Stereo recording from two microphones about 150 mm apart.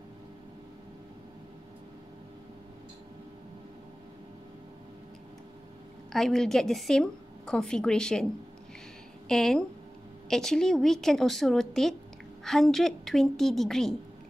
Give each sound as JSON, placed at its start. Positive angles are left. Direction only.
{"t": 6.1, "sound": "a woman's voice", "side_deg": 5}
{"t": 9.3, "sound": "a woman's voice", "side_deg": 5}